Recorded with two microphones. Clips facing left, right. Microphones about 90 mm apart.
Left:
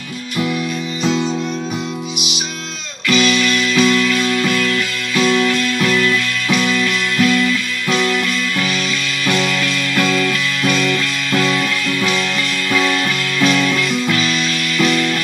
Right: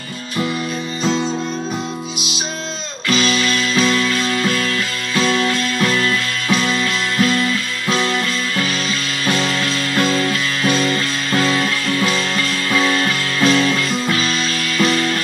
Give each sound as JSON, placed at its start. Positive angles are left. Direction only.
{"t": 3.1, "sound": "music", "side_deg": -35}